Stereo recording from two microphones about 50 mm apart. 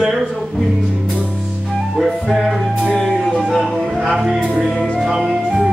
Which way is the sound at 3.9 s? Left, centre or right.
Centre.